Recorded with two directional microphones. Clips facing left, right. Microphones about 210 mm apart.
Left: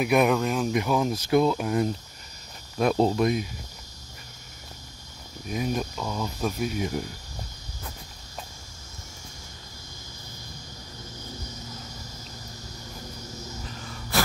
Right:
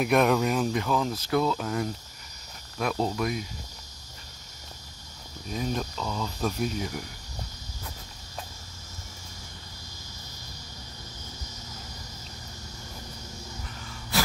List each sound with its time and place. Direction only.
0.0 s speech: 5° left (ahead or behind)
0.7 s speech: 15° left (ahead or behind)
2.8 s speech: 30° left (ahead or behind)
5.5 s speech: 10° left (ahead or behind)